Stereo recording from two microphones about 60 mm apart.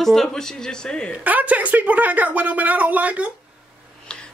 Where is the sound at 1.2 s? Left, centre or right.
Right.